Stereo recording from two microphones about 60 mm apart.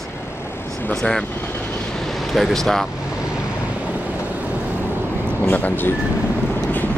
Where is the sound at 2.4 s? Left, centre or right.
Centre.